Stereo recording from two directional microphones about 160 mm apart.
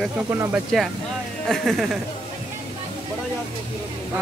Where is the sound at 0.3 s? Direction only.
15° right (ahead or behind).